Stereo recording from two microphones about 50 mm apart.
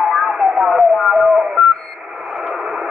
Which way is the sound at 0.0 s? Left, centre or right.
Centre.